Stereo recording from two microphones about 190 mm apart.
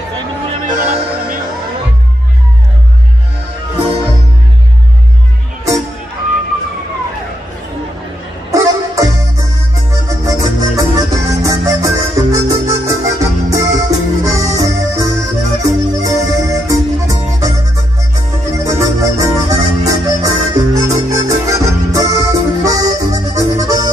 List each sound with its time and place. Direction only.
0.5 s music: 40° right (ahead or behind)
8.5 s music: 15° right (ahead or behind)
18.6 s music: 15° right (ahead or behind)